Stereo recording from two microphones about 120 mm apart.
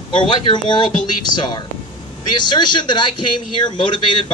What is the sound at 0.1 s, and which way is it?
A man's voice, 40° left (ahead or behind).